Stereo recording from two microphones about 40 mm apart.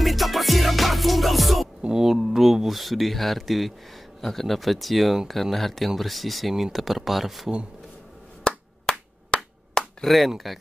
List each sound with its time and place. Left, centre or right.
0.0 s music: centre
2.1 s speech: centre
8.5 s clapping: centre
10.0 s speech: centre